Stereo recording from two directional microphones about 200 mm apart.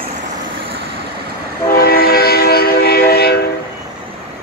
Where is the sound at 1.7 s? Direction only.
50° left (ahead or behind).